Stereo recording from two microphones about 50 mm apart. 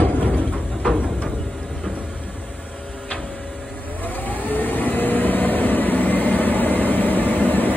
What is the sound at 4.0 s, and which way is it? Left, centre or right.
Vehicle, left.